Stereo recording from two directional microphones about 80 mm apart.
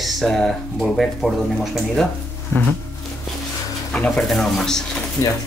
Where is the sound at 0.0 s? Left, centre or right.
Centre.